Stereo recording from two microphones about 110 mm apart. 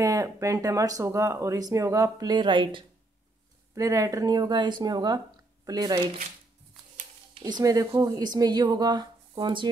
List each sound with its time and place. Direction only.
0.0 s speech: 30° right (ahead or behind); by 2.8 s 45° right (ahead or behind)
3.7 s speech: 30° right (ahead or behind)
7.3 s speech: 40° right (ahead or behind)